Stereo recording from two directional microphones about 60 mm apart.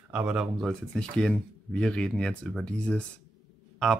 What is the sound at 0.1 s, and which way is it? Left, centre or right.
Speech, centre.